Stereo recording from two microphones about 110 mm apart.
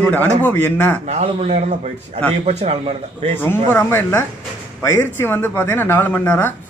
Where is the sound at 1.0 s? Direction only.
75° right (ahead or behind).